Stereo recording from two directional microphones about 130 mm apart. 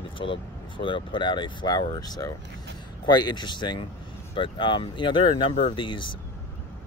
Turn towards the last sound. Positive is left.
turn(degrees=40)  # may be behind; listen again after turning